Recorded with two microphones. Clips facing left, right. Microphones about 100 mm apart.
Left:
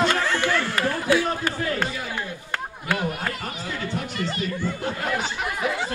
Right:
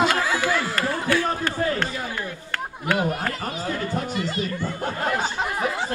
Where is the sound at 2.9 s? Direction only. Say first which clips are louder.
Right 3 dB; 40° right (ahead or behind).